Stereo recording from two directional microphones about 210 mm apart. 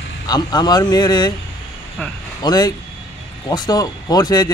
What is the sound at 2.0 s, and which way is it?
Speech, 5° left (ahead or behind).